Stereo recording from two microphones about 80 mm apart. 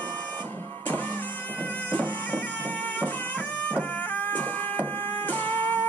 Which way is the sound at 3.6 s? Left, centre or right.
Centre.